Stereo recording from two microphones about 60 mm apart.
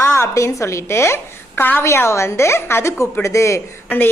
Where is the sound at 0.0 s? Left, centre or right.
Left.